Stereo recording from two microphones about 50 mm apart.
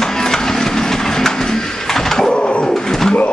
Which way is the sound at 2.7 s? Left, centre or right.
Centre.